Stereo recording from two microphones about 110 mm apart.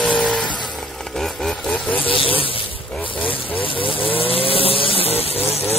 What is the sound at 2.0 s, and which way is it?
Speech, 55° left (ahead or behind).